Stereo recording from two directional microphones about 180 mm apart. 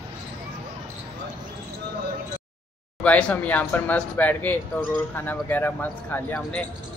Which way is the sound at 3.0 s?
10° left (ahead or behind).